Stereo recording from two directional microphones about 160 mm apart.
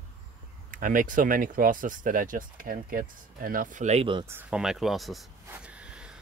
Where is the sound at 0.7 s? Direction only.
55° right (ahead or behind); by 4.3 s 35° right (ahead or behind).